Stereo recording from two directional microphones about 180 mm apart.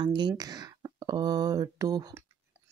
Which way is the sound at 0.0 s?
25° right (ahead or behind).